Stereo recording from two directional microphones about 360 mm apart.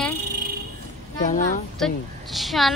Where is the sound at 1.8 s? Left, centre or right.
Centre.